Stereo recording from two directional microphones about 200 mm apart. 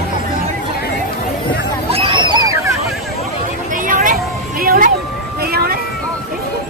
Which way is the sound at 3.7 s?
40° right (ahead or behind).